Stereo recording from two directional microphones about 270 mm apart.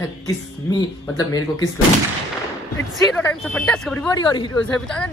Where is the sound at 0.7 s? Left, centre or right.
Centre.